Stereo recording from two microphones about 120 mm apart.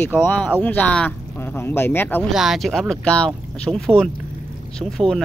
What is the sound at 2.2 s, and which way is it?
Speech, centre (ahead or behind).